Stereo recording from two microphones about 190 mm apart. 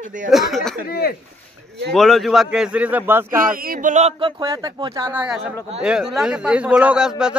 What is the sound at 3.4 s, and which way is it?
Speech, 50° right (ahead or behind).